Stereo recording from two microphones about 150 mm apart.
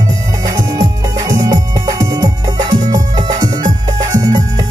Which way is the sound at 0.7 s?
20° right (ahead or behind).